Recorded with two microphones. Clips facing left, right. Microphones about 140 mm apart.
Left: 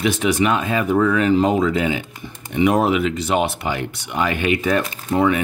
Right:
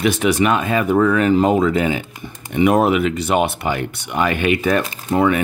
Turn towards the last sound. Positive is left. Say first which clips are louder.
# right 1 dB
turn(degrees=-55)  # may be behind; listen again after turning